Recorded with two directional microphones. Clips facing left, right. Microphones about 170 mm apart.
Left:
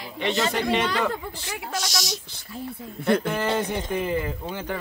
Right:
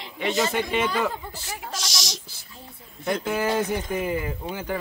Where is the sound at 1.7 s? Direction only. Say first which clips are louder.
Left 8 dB; 90° right.